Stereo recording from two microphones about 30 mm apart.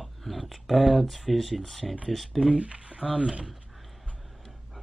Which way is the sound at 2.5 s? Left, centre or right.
Right.